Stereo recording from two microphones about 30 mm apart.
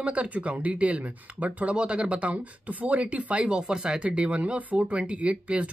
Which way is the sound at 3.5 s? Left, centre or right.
Right.